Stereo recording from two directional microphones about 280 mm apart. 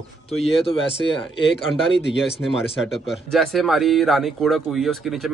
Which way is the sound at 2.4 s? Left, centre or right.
Centre.